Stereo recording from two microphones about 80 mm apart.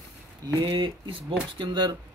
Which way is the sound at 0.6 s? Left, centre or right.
Right.